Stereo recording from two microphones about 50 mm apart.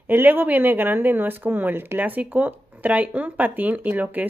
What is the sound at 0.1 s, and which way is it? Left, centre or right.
Speech, right.